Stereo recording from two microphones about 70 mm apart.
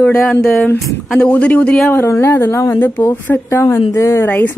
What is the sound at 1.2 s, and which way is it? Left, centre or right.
Speech, centre.